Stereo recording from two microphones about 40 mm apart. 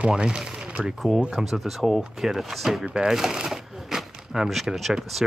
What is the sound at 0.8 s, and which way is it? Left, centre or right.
Speech, centre.